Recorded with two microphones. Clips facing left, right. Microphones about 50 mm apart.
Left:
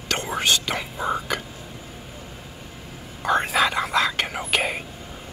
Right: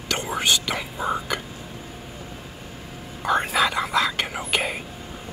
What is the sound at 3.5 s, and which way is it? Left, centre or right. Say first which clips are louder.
Whispering: even; left.